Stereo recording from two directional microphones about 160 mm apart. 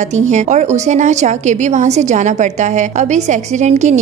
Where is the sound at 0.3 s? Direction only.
45° right (ahead or behind).